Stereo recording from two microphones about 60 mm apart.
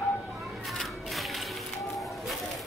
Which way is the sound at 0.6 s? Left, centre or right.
Centre.